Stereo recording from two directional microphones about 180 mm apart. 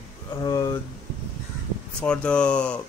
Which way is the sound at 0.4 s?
20° left (ahead or behind).